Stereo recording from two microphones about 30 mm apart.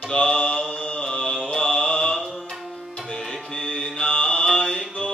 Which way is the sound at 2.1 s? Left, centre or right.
Centre.